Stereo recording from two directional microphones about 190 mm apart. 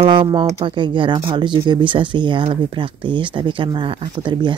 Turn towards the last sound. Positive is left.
turn(degrees=-25)  # may be behind; listen again after turning